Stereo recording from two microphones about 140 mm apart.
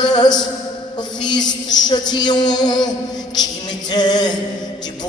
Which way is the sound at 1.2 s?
30° left (ahead or behind).